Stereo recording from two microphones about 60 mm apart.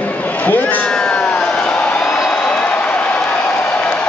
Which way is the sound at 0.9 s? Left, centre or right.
Centre.